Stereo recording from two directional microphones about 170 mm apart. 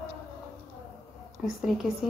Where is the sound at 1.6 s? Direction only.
Centre (ahead or behind).